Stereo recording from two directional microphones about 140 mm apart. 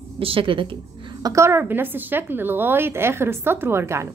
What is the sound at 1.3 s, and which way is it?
A woman's voice, 20° right (ahead or behind).